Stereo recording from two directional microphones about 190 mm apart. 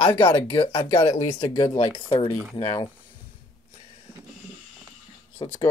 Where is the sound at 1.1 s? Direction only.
15° left (ahead or behind).